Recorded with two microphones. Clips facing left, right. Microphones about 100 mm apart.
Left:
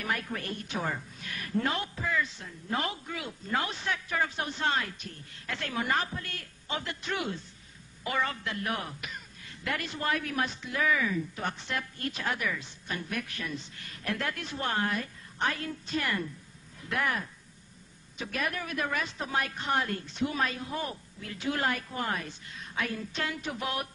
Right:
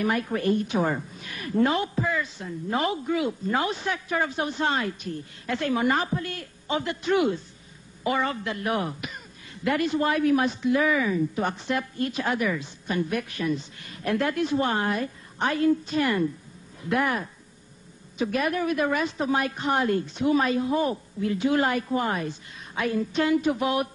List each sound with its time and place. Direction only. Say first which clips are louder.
0.0 s speech: right 9 dB; 15° right (ahead or behind)